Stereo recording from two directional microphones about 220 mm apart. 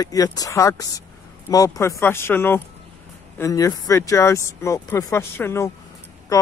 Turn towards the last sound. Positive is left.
turn(degrees=15)  # may be behind; listen again after turning